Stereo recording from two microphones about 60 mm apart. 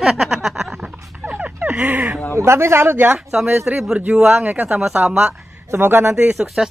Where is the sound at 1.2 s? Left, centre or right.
Right.